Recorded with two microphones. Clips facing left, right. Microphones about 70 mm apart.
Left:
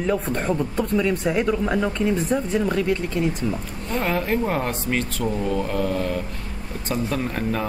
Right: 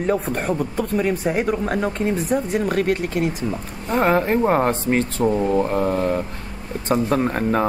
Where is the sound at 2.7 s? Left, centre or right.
Right.